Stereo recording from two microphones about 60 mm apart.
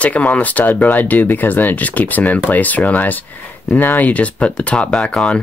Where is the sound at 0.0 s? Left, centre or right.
Left.